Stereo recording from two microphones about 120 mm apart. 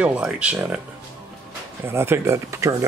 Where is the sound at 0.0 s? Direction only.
10° right (ahead or behind).